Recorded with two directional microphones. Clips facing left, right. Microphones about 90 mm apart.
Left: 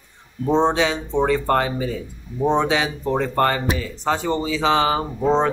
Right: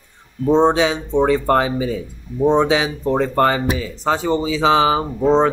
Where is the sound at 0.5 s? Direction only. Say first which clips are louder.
Right 4 dB; 10° right (ahead or behind).